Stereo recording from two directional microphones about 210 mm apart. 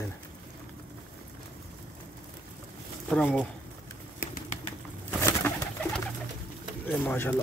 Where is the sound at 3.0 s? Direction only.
Centre (ahead or behind).